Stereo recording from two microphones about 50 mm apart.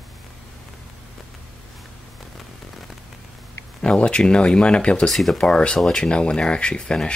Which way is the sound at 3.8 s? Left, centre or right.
Left.